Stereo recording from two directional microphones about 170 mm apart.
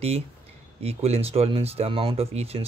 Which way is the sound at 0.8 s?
35° right (ahead or behind).